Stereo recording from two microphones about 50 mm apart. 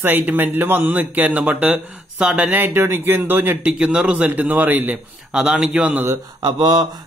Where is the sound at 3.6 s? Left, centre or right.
Centre; by 4.9 s right.